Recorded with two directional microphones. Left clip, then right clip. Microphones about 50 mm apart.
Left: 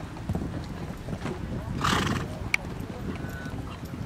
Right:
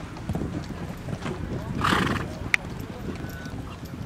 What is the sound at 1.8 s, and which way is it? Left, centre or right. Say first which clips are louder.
Horse: right 3 dB; left.